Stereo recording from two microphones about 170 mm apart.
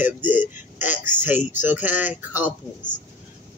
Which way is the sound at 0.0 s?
10° right (ahead or behind).